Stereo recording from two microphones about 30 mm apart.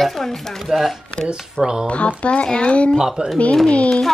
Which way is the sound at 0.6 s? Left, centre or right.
Centre.